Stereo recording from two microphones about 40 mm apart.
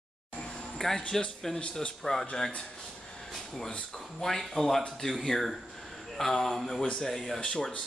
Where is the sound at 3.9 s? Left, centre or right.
Centre.